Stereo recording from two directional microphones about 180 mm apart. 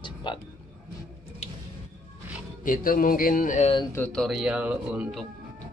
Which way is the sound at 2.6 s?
50° left (ahead or behind).